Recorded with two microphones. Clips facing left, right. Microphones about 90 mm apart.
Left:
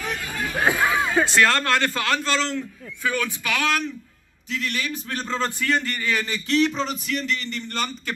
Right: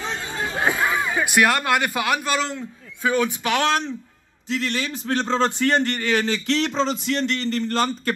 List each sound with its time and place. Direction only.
0.0 s chatter: 25° right (ahead or behind)
1.1 s a man's voice: 15° right (ahead or behind)
5.6 s speech: 60° right (ahead or behind); by 6.8 s 90° right
6.8 s a man's voice: 30° right (ahead or behind)